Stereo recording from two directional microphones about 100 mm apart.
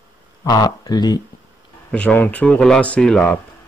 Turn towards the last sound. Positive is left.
turn(degrees=5)  # may be behind; listen again after turning